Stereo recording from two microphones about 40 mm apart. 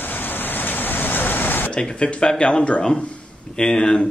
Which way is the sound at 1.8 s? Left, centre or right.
Left.